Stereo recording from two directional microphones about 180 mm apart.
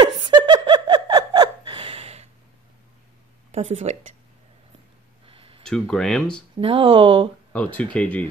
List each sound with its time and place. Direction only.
0.2 s a sound: 25° right (ahead or behind)
3.5 s speech: 35° right (ahead or behind)
5.2 s a sound: 30° right (ahead or behind)
5.9 s speech: 5° left (ahead or behind)
6.6 s speech: 30° right (ahead or behind)
7.5 s speech: 5° left (ahead or behind)